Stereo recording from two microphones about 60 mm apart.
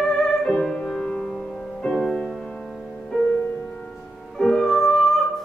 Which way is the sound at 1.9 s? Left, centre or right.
Centre.